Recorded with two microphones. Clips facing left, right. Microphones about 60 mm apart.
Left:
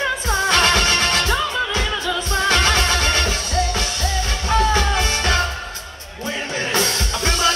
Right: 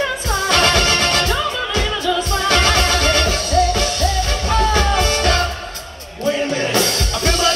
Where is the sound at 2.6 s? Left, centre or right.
Left.